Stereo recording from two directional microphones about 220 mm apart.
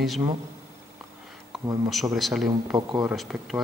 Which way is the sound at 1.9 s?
Centre (ahead or behind).